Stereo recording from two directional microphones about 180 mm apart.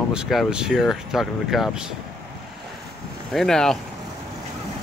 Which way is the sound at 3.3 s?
5° left (ahead or behind).